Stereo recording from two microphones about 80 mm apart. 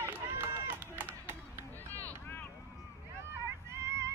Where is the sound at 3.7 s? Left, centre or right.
Right.